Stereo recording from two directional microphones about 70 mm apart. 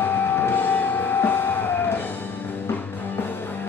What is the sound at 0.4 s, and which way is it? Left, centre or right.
Music, left.